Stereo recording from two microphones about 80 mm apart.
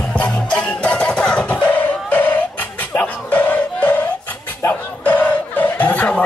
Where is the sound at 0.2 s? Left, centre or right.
Centre.